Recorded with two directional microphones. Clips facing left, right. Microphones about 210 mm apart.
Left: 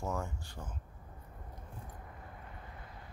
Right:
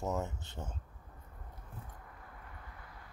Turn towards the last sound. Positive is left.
turn(degrees=25)  # may be behind; listen again after turning